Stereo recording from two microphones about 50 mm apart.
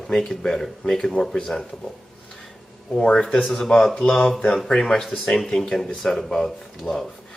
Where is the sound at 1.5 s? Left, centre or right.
Left.